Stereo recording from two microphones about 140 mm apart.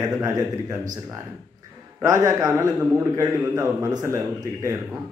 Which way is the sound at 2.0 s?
25° right (ahead or behind).